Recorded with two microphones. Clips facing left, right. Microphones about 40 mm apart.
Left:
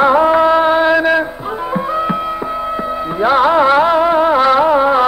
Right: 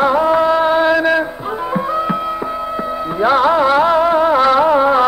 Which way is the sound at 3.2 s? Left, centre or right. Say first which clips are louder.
Left 2 dB; centre.